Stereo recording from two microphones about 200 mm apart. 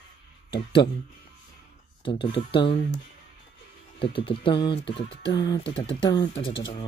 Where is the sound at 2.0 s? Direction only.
25° left (ahead or behind).